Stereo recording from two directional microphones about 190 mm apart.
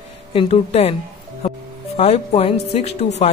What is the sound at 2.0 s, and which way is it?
Speech, 35° left (ahead or behind).